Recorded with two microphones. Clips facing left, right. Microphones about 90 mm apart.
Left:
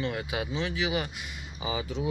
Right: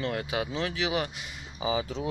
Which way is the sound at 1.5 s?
30° right (ahead or behind).